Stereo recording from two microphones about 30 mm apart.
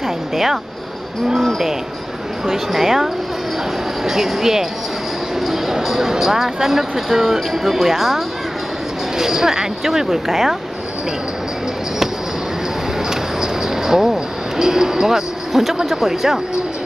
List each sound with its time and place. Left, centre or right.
2.4 s speech: centre
9.2 s speech: centre
13.1 s a sound: centre
15.5 s speech: centre